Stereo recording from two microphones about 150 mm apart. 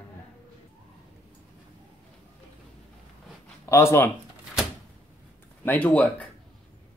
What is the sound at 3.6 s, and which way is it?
Speech, 20° left (ahead or behind).